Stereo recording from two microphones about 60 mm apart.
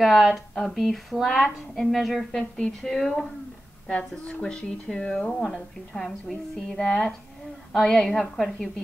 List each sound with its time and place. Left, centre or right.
0.0 s a woman's voice: centre
2.5 s a woman's voice: centre
5.4 s a woman's voice: centre